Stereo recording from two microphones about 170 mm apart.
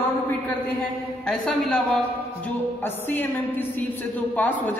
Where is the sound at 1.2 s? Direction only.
5° left (ahead or behind).